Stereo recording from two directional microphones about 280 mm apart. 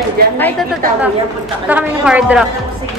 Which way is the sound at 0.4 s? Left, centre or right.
Centre.